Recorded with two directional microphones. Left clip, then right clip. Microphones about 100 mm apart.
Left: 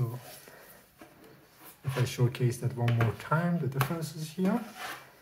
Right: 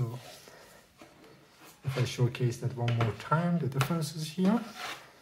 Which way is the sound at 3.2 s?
5° left (ahead or behind).